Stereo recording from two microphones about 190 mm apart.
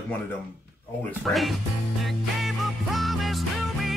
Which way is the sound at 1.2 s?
Centre (ahead or behind).